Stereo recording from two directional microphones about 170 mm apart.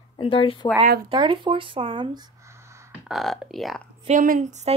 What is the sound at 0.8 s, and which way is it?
Speech, 60° right (ahead or behind).